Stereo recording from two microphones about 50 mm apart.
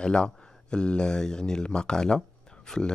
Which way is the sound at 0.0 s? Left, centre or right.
Centre.